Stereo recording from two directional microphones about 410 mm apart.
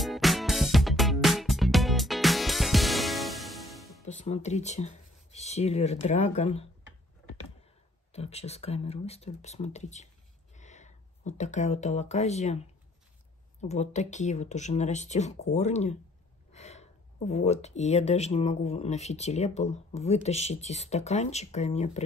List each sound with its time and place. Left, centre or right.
0.0 s music: centre
4.0 s speech: centre
8.1 s speech: centre
13.6 s speech: centre